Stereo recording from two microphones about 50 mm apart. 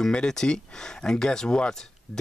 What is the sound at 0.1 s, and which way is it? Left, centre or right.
Speech, centre.